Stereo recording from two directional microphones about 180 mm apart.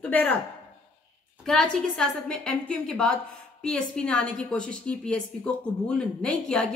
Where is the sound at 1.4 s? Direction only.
5° left (ahead or behind).